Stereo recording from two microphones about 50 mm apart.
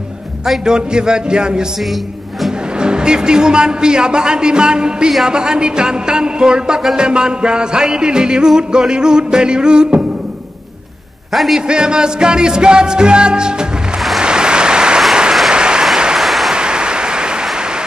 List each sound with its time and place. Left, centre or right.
0.7 s music: centre
2.8 s music: centre
11.3 s a man's voice: centre
11.6 s music: centre
14.2 s applause: centre
16.2 s a sound: centre
16.5 s a sound: centre